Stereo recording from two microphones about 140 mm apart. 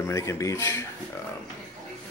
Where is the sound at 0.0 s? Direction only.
20° left (ahead or behind).